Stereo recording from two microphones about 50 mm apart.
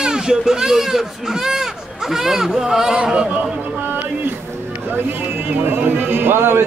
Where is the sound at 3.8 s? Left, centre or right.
Right.